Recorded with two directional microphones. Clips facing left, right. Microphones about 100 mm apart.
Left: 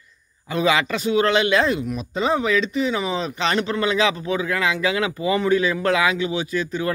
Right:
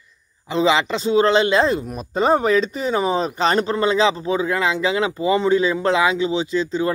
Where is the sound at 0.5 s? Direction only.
25° right (ahead or behind).